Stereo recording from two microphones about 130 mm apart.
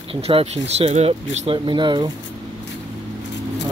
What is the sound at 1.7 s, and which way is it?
Speech, 35° right (ahead or behind).